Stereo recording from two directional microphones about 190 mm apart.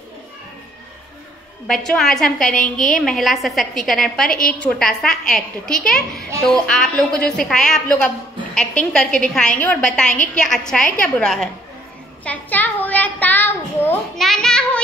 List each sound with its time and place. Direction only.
1.9 s a woman's voice: centre (ahead or behind)
2.5 s a woman's voice: 40° left (ahead or behind)
2.9 s a woman's voice: centre (ahead or behind)
12.3 s a sound: 10° left (ahead or behind)